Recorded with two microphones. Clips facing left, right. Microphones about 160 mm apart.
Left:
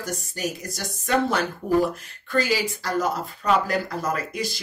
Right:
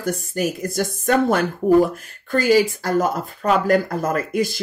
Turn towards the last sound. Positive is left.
turn(degrees=-50)  # may be behind; listen again after turning